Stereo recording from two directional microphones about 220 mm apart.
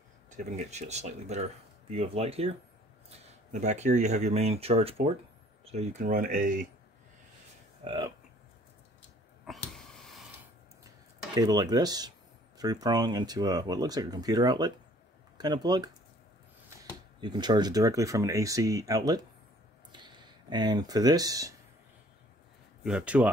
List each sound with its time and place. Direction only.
0.3 s speech: 35° right (ahead or behind)
7.8 s speech: 20° right (ahead or behind)
9.5 s speech: centre (ahead or behind)
11.3 s speech: 15° right (ahead or behind)
17.2 s speech: 20° right (ahead or behind)
22.8 s speech: 5° right (ahead or behind)